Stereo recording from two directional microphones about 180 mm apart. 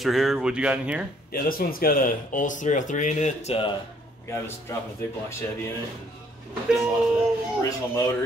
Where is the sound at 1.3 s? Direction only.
55° left (ahead or behind); by 3.7 s 35° left (ahead or behind).